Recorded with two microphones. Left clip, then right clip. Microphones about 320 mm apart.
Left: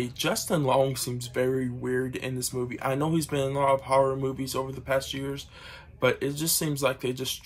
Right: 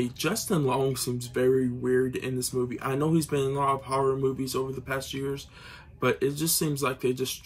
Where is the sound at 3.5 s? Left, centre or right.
Left.